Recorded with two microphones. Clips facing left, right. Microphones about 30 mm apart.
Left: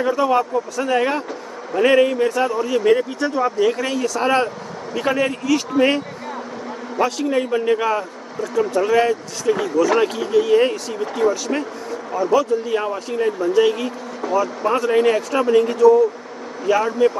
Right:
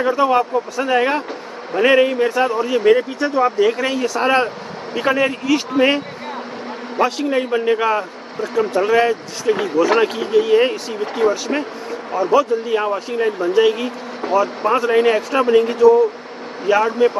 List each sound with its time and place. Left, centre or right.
0.0 s a man's voice: right
2.9 s a man's voice: centre; by 10.0 s right
10.0 s a man's voice: right
14.2 s speech: right
14.7 s a man's voice: right